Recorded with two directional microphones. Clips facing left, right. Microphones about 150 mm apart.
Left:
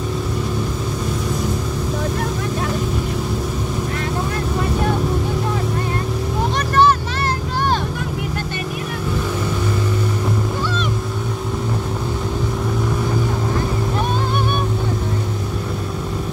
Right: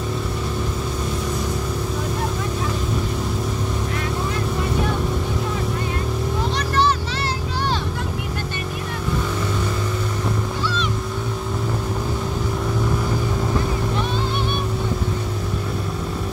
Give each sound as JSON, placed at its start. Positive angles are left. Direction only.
{"t": 6.7, "sound": "vehicle", "side_deg": 50}